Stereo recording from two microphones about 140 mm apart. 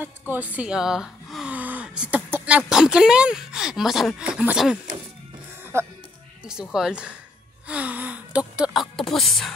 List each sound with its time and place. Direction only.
0.3 s speech: 10° right (ahead or behind)
5.7 s speech: 20° right (ahead or behind)
6.4 s speech: 5° right (ahead or behind)